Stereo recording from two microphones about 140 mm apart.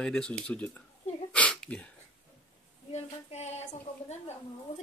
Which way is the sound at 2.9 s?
50° left (ahead or behind).